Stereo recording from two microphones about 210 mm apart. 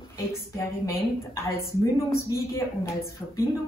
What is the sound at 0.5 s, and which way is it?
A woman's voice, 15° left (ahead or behind).